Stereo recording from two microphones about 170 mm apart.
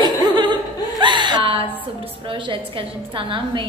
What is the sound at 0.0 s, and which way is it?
Chuckle, 25° right (ahead or behind).